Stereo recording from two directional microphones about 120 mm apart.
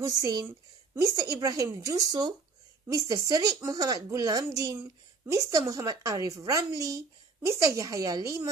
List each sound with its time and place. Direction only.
0.0 s a woman's voice: 30° right (ahead or behind)